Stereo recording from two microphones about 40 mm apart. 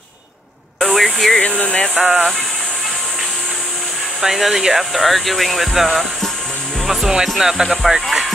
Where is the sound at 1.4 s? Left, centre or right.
Left.